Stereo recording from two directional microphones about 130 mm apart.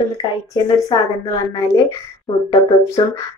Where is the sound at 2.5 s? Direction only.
20° left (ahead or behind).